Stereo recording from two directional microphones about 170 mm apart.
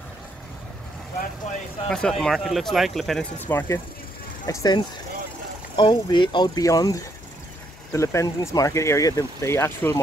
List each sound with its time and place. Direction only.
1.9 s speech: 5° left (ahead or behind)
3.3 s speech: 10° left (ahead or behind)
5.8 s speech: 25° left (ahead or behind)